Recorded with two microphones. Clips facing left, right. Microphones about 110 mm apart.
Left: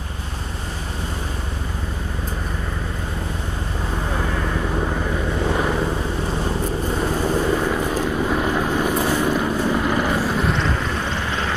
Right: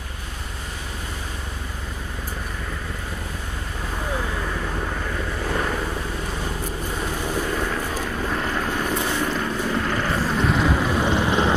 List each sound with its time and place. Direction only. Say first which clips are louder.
5.4 s vehicle: left 4 dB; 15° left (ahead or behind)
7.0 s vehicle: left 5 dB; 15° left (ahead or behind); by 11.5 s 20° right (ahead or behind)